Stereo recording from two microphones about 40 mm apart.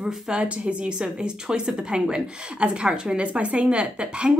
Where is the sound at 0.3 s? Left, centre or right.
Right.